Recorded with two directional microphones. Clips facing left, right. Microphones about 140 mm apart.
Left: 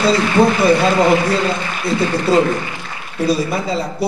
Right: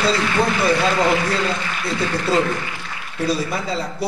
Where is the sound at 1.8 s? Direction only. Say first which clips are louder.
Left 7 dB; 30° left (ahead or behind).